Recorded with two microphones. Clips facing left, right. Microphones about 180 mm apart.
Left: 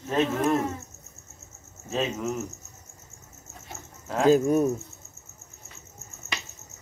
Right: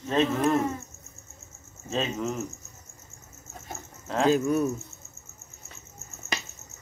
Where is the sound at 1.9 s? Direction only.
5° left (ahead or behind).